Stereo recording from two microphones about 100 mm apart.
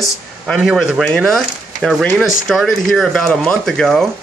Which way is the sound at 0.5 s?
5° right (ahead or behind).